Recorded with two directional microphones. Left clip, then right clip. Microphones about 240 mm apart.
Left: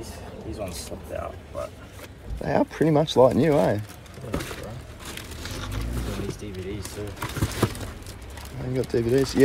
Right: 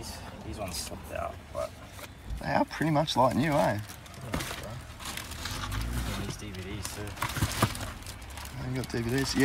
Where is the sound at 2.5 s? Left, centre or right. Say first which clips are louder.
Left 6 dB; centre.